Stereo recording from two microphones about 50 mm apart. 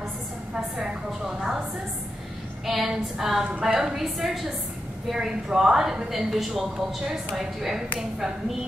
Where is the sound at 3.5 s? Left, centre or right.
Right.